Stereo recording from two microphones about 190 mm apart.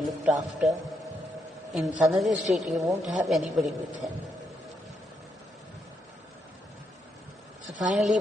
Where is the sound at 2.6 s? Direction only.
Centre (ahead or behind).